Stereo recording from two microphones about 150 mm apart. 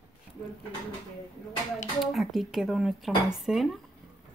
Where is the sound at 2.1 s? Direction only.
Centre (ahead or behind).